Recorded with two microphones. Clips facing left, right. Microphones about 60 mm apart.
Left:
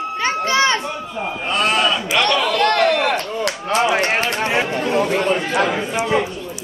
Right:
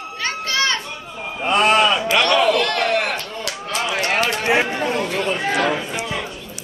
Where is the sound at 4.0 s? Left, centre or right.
Left.